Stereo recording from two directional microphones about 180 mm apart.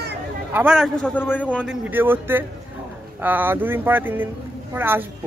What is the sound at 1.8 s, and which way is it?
Speech, 10° right (ahead or behind).